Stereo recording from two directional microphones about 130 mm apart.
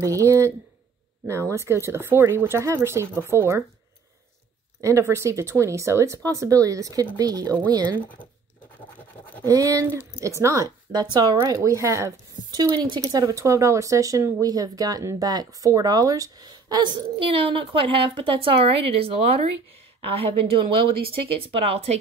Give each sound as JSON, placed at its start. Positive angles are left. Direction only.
{"t": 0.0, "sound": "a woman's voice", "side_deg": -25}
{"t": 4.8, "sound": "a woman's voice", "side_deg": -20}
{"t": 9.4, "sound": "a woman's voice", "side_deg": -25}
{"t": 21.1, "sound": "speech", "side_deg": -45}